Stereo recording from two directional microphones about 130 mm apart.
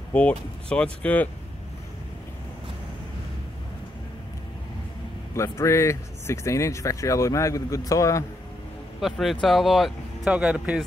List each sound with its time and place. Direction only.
0.1 s speech: 10° left (ahead or behind)
5.3 s speech: 20° left (ahead or behind)
9.0 s speech: centre (ahead or behind)